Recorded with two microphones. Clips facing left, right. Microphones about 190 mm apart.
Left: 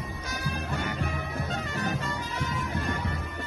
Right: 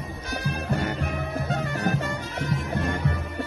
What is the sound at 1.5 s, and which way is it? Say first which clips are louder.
Music: right 6 dB; 60° right (ahead or behind).